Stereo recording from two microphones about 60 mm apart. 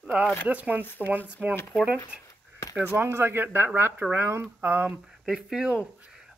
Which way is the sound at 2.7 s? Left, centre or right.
Right.